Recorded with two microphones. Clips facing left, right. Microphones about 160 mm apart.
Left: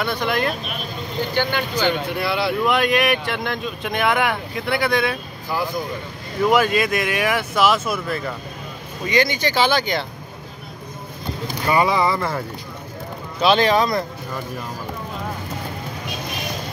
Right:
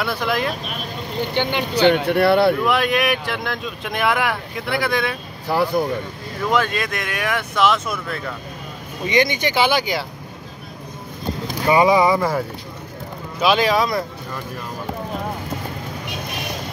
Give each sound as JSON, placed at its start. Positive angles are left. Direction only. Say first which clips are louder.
{"t": 0.0, "sound": "speech", "louder": "even", "side_deg": 0}
{"t": 1.3, "sound": "speech", "louder": "even", "side_deg": -25}
{"t": 1.8, "sound": "speech", "louder": "right 9 dB", "side_deg": -70}
{"t": 2.6, "sound": "speech", "louder": "even", "side_deg": 0}
{"t": 5.5, "sound": "speech", "louder": "right 5 dB", "side_deg": -65}
{"t": 6.5, "sound": "speech", "louder": "left 2 dB", "side_deg": 10}
{"t": 9.0, "sound": "speech", "louder": "right 1 dB", "side_deg": -20}
{"t": 11.6, "sound": "speech", "louder": "right 4 dB", "side_deg": -15}